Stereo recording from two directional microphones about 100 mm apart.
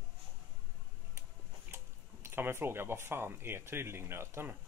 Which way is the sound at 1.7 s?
25° right (ahead or behind).